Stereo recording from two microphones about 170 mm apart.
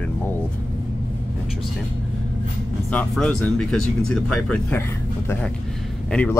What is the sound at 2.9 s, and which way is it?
Speech, 5° left (ahead or behind).